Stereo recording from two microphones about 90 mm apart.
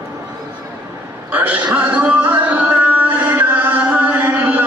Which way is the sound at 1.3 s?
15° right (ahead or behind).